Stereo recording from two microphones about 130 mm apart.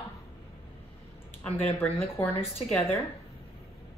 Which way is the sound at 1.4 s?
15° left (ahead or behind).